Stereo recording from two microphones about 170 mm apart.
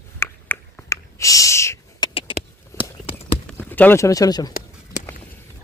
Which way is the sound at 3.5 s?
10° left (ahead or behind).